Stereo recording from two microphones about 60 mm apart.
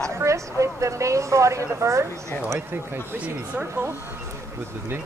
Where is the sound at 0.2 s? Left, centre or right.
Right.